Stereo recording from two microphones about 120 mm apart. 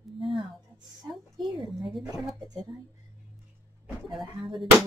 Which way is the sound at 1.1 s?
Centre (ahead or behind).